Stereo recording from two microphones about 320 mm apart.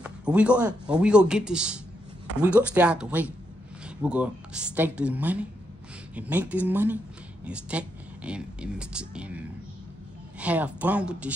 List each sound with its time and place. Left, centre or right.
0.0 s speech: centre